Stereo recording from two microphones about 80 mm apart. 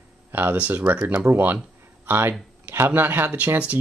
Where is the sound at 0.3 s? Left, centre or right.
Right.